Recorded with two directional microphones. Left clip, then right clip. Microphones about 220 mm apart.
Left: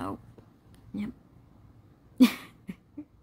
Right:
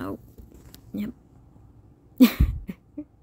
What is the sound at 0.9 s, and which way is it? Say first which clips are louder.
Speech: right 4 dB; 20° left (ahead or behind).